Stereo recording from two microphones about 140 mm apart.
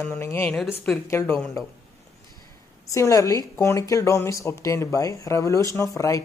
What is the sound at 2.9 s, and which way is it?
Speech, 20° left (ahead or behind).